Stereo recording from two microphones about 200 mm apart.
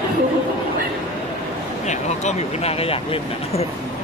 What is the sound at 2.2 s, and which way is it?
Speech, 30° left (ahead or behind).